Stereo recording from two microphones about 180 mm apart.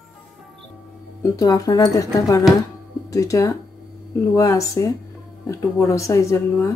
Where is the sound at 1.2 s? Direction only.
20° left (ahead or behind).